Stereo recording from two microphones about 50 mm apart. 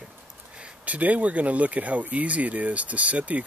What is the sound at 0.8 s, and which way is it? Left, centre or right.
Speech, right.